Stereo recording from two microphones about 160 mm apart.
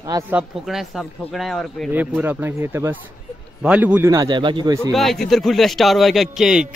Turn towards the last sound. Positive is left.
turn(degrees=-5)  # may be behind; listen again after turning